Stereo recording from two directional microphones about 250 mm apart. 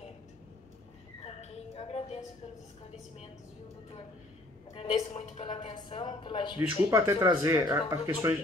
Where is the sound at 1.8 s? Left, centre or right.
Left.